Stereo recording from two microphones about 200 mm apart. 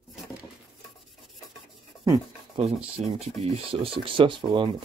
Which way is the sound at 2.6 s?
30° right (ahead or behind).